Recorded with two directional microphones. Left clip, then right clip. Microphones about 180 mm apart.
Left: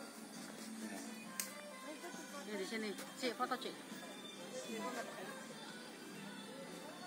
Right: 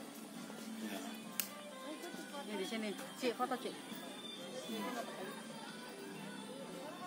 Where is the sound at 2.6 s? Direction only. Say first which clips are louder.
Right 1 dB; 45° right (ahead or behind).